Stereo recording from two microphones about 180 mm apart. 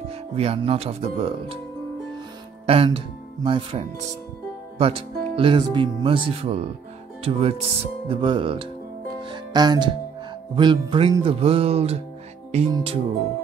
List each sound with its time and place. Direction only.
0.4 s speech: 35° right (ahead or behind)
2.6 s speech: 30° right (ahead or behind)
9.3 s music: 25° right (ahead or behind)
10.5 s speech: 25° right (ahead or behind)